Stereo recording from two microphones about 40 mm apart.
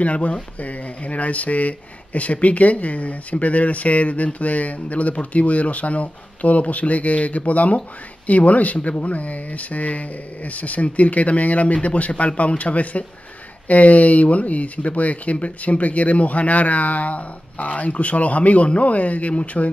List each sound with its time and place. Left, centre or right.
0.0 s speech: left